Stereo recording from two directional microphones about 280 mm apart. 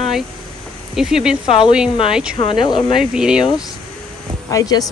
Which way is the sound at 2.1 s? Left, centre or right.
Centre.